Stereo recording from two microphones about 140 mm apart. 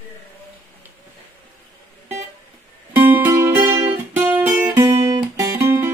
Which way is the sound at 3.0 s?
10° right (ahead or behind).